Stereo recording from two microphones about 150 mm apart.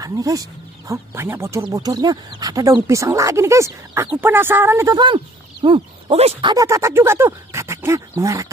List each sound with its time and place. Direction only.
0.0 s speech: 25° right (ahead or behind)
4.9 s speech: 30° right (ahead or behind)
6.5 s speech: 20° right (ahead or behind)